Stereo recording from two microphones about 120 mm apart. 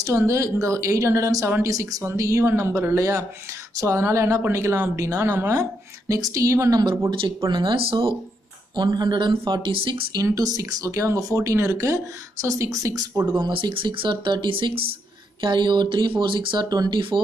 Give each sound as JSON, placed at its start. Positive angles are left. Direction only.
{"t": 0.0, "sound": "a woman's voice", "side_deg": -25}
{"t": 7.1, "sound": "speech", "side_deg": -40}
{"t": 8.7, "sound": "speech", "side_deg": -35}
{"t": 10.2, "sound": "a woman's voice", "side_deg": -30}
{"t": 13.3, "sound": "speech", "side_deg": -45}